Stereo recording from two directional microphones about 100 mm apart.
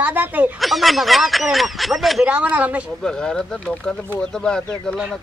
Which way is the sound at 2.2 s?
15° right (ahead or behind).